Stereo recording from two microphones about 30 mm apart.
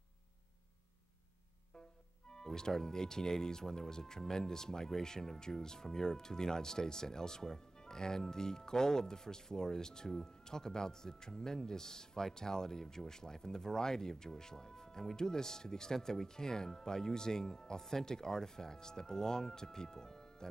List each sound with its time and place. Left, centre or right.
2.3 s speech: left